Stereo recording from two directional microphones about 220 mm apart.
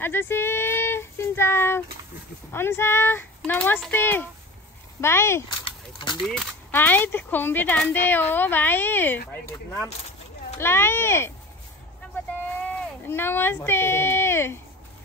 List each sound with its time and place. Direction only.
0.0 s speech: 10° left (ahead or behind)
5.7 s a sound: 20° left (ahead or behind)
6.2 s speech: centre (ahead or behind)
10.6 s speech: 10° left (ahead or behind)
12.6 s speech: 10° left (ahead or behind)